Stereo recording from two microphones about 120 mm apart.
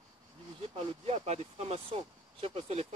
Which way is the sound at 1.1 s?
60° right (ahead or behind).